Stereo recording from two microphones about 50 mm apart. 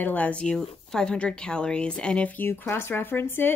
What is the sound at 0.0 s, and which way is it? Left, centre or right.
Speech, left.